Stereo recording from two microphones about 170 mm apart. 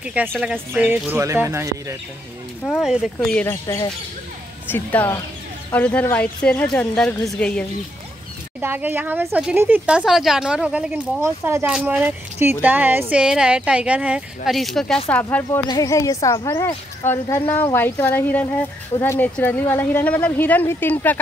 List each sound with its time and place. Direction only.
0.0 s a woman's voice: 5° right (ahead or behind)
2.8 s speech: 5° right (ahead or behind)
3.3 s a woman's voice: 15° left (ahead or behind)
8.5 s a woman's voice: 10° right (ahead or behind); by 21.2 s 10° left (ahead or behind)